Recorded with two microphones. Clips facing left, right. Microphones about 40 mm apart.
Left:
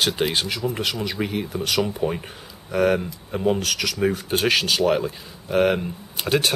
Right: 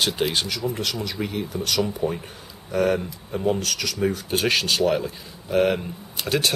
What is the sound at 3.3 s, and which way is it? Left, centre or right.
Speech, left.